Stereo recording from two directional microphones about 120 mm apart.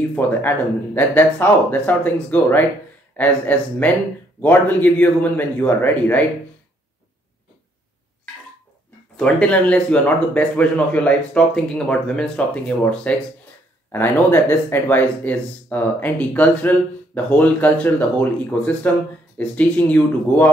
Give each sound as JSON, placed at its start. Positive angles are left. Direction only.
{"t": 0.1, "sound": "speech", "side_deg": 15}
{"t": 9.1, "sound": "speech", "side_deg": 10}